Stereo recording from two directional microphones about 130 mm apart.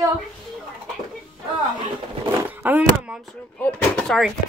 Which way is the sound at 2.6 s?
15° right (ahead or behind).